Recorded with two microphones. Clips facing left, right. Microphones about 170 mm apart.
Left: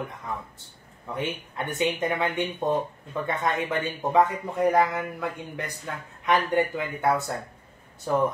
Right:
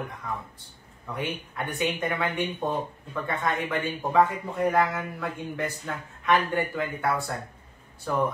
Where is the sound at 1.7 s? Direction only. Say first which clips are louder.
Left 2 dB; 20° left (ahead or behind).